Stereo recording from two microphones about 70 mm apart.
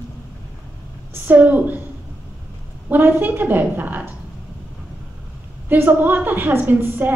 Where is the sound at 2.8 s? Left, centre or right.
Right.